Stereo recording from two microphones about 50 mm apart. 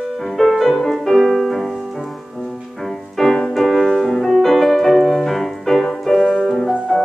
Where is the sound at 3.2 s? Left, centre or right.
Centre.